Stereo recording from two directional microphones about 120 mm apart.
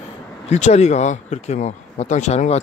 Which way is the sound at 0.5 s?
70° left (ahead or behind).